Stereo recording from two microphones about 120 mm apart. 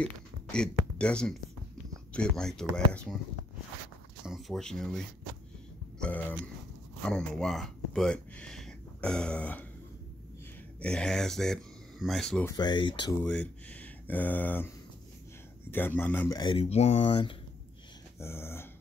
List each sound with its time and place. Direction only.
0.0 s beatboxing: 5° left (ahead or behind)
0.9 s speech: 10° left (ahead or behind)
4.3 s speech: centre (ahead or behind)
10.8 s speech: 5° left (ahead or behind)
12.5 s speech: 40° left (ahead or behind)
13.2 s speech: 10° left (ahead or behind)
15.7 s speech: 15° left (ahead or behind)
16.3 s speech: 35° left (ahead or behind)
16.5 s speech: 60° left (ahead or behind)
18.2 s dog: 20° left (ahead or behind)